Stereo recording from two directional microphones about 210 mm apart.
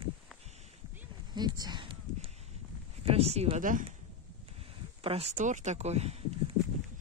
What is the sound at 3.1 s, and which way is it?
Speech, 30° right (ahead or behind).